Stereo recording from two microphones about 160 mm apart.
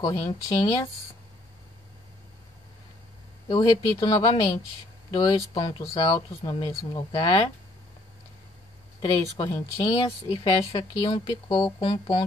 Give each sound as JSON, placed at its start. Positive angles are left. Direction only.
{"t": 0.0, "sound": "speech", "side_deg": 25}
{"t": 3.4, "sound": "speech", "side_deg": 30}
{"t": 9.0, "sound": "speech", "side_deg": 25}